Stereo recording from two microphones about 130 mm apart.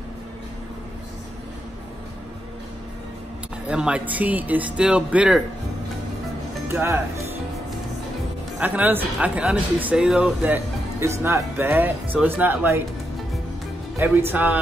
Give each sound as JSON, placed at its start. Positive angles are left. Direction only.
{"t": 3.6, "sound": "speech", "side_deg": -10}
{"t": 6.7, "sound": "speech", "side_deg": -20}
{"t": 8.5, "sound": "speech", "side_deg": -10}
{"t": 13.9, "sound": "speech", "side_deg": -15}